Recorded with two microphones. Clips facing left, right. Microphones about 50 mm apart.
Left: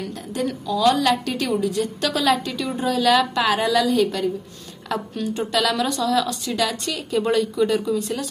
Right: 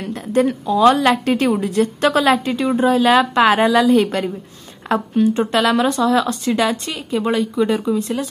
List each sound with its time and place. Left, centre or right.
0.0 s speech: right